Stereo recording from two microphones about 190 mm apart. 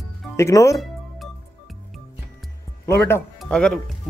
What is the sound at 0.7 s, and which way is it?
Music, centre (ahead or behind).